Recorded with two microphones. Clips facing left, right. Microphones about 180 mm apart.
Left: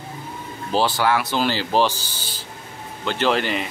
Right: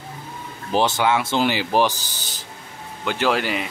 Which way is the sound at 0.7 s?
20° right (ahead or behind).